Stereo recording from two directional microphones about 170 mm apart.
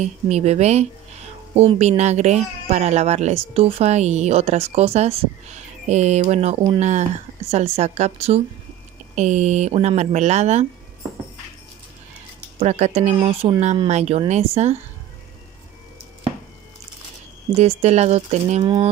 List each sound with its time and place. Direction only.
0.0 s speech: 40° right (ahead or behind)
12.5 s speech: 40° right (ahead or behind)
17.5 s speech: 35° right (ahead or behind)
18.6 s speech: 25° right (ahead or behind)